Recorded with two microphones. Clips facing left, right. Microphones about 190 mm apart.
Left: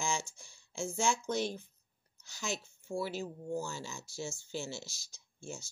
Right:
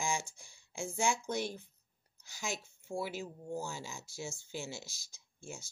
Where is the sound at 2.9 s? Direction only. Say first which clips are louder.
Left 2 dB; 15° right (ahead or behind).